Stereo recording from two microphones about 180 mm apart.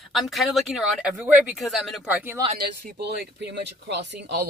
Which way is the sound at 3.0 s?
70° right (ahead or behind).